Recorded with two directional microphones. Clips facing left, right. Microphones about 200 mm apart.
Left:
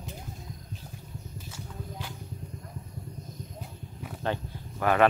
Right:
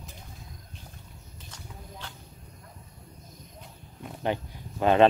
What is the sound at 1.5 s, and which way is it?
Horse, 10° left (ahead or behind).